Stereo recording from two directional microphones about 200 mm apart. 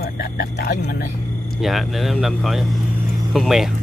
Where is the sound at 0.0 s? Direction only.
50° left (ahead or behind).